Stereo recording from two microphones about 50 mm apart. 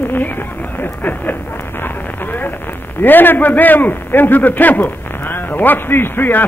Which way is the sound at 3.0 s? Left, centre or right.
Left.